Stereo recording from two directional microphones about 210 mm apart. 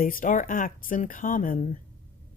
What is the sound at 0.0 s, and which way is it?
A woman's voice, 40° left (ahead or behind).